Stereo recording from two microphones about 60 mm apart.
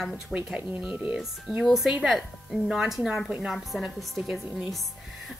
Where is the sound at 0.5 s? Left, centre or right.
Right.